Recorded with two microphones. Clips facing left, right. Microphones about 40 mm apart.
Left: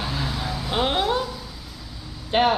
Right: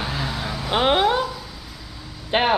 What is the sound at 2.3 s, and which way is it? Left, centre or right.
Speech, right.